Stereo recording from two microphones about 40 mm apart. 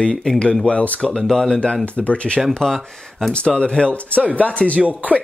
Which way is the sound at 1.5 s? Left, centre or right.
Left.